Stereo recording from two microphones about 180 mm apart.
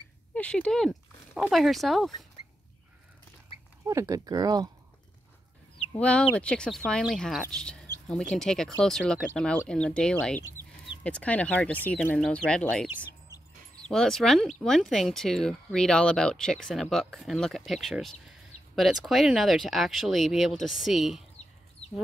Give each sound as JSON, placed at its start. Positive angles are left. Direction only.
{"t": 0.3, "sound": "a sound", "side_deg": 5}
{"t": 1.4, "sound": "speech", "side_deg": 0}
{"t": 3.8, "sound": "speech", "side_deg": -15}
{"t": 5.9, "sound": "speech", "side_deg": 5}